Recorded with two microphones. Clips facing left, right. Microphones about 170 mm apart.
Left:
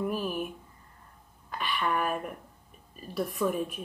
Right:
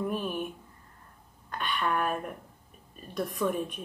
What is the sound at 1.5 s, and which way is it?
Speech, 5° left (ahead or behind).